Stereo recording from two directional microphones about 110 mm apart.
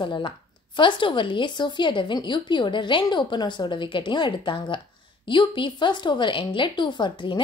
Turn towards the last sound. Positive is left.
turn(degrees=45)  # may be behind; listen again after turning